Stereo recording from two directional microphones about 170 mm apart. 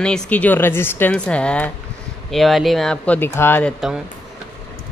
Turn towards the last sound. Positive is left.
turn(degrees=10)  # may be behind; listen again after turning